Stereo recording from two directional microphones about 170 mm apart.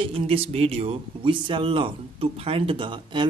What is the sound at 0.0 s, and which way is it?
Speech, 35° right (ahead or behind).